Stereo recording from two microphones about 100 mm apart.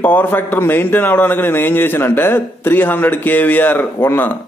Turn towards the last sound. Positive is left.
turn(degrees=20)  # may be behind; listen again after turning